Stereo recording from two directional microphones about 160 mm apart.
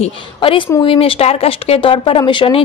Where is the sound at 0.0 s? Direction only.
35° left (ahead or behind).